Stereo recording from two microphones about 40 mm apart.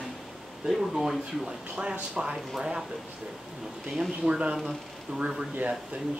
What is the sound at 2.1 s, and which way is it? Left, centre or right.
Speech, right.